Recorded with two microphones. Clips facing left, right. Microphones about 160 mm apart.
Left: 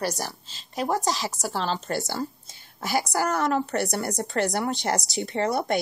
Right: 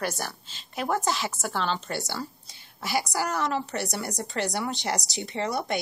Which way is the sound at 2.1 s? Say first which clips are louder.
Left 4 dB; 45° left (ahead or behind).